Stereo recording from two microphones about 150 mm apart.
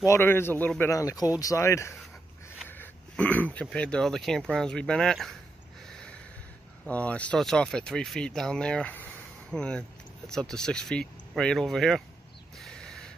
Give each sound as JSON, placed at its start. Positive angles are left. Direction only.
{"t": 0.0, "sound": "speech", "side_deg": 15}
{"t": 5.9, "sound": "snort", "side_deg": 5}
{"t": 6.9, "sound": "speech", "side_deg": 10}
{"t": 12.5, "sound": "a sound", "side_deg": 5}